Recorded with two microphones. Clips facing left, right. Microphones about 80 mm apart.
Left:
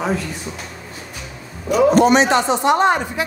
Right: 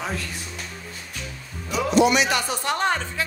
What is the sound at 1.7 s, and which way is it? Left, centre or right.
Speech, left.